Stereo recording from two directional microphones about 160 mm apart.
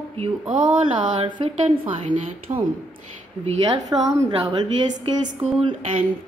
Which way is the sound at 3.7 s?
20° right (ahead or behind).